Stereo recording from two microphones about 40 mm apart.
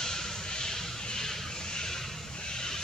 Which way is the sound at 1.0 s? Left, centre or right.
Centre.